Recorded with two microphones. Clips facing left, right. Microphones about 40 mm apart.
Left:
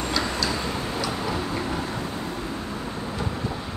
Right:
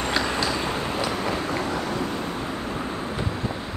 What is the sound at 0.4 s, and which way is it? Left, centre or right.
Tick-tock, right.